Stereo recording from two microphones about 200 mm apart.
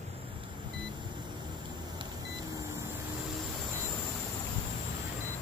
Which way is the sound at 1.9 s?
20° right (ahead or behind).